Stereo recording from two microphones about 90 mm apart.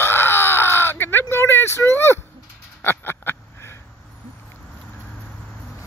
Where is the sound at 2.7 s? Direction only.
20° left (ahead or behind).